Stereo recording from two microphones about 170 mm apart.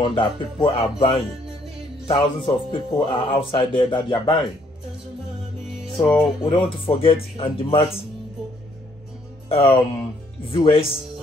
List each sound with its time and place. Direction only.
0.0 s speech: 30° left (ahead or behind)
6.0 s speech: 30° left (ahead or behind)
9.5 s speech: 35° left (ahead or behind)